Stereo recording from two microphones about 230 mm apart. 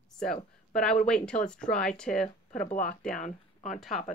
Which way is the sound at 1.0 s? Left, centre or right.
Centre.